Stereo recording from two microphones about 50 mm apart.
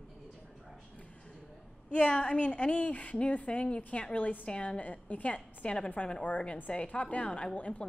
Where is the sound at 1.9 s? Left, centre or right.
Left.